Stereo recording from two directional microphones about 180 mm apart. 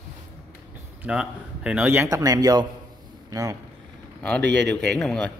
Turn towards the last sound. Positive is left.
turn(degrees=5)  # may be behind; listen again after turning